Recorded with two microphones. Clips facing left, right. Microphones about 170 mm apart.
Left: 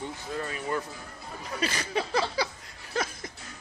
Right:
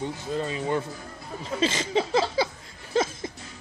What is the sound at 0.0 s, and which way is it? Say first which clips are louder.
Speech: right 5 dB; 25° right (ahead or behind).